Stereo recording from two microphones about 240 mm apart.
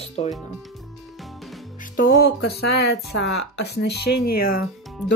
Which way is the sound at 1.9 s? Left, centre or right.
Left.